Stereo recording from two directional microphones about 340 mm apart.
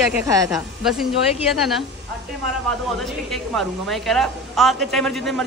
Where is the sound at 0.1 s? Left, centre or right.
Centre.